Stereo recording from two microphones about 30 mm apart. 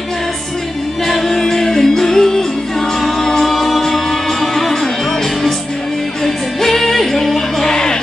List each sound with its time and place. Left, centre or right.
1.0 s music: centre
6.2 s music: centre
7.6 s music: left